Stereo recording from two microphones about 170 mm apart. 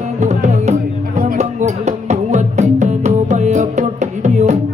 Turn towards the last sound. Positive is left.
turn(degrees=-45)  # may be behind; listen again after turning